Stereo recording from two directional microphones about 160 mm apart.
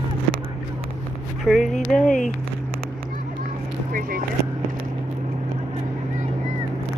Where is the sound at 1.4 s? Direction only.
Centre (ahead or behind).